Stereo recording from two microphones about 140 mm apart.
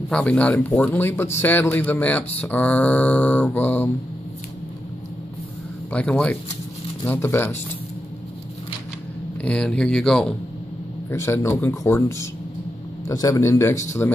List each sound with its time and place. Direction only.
0.1 s speech: 10° left (ahead or behind)
5.9 s speech: 10° left (ahead or behind)
9.4 s speech: 5° left (ahead or behind)
11.1 s speech: 20° left (ahead or behind)